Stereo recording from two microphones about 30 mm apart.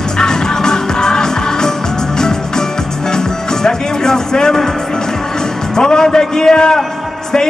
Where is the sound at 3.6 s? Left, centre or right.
Left.